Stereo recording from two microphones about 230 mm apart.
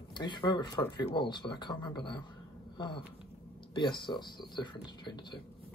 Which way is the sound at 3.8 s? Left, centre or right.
Centre.